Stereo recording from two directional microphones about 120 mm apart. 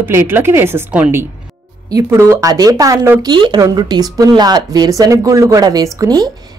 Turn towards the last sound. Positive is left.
turn(degrees=-30)  # may be behind; listen again after turning